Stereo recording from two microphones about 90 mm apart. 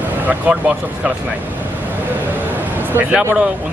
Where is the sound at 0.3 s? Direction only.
15° right (ahead or behind).